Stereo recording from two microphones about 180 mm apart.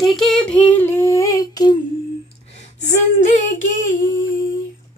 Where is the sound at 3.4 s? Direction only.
45° left (ahead or behind).